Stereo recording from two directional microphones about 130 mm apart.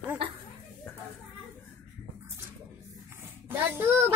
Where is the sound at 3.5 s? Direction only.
15° right (ahead or behind).